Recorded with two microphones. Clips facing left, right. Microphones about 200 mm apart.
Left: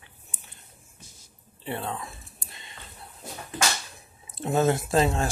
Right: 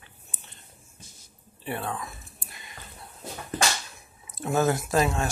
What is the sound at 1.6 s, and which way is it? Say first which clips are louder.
Speech: even; 20° left (ahead or behind).